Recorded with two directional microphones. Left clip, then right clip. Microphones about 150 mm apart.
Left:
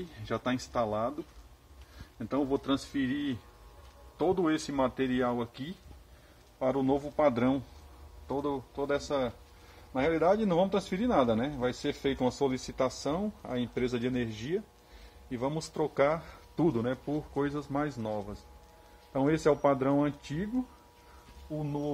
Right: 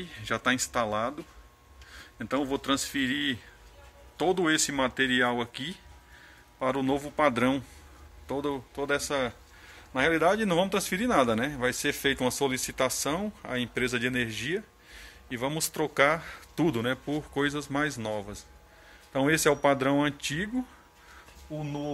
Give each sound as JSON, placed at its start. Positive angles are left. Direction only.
{"t": 0.2, "sound": "speech", "side_deg": -5}
{"t": 2.1, "sound": "speech", "side_deg": -10}
{"t": 18.0, "sound": "speech", "side_deg": -25}